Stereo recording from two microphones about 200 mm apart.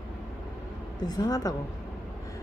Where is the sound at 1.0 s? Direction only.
20° left (ahead or behind).